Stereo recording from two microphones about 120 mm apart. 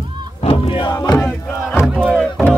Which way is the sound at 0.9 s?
30° left (ahead or behind).